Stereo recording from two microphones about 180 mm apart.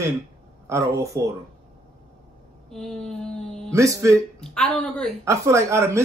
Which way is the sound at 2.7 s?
Centre (ahead or behind).